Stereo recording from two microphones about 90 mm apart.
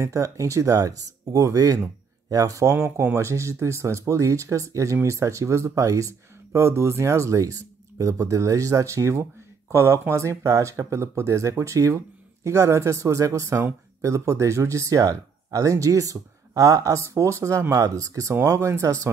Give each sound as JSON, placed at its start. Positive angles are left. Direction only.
{"t": 0.0, "sound": "speech", "side_deg": -35}